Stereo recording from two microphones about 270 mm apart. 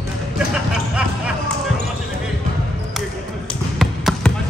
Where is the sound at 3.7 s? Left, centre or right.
Centre.